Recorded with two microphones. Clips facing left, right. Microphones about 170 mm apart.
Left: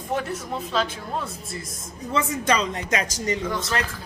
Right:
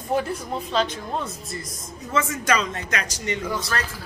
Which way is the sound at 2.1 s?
35° left (ahead or behind).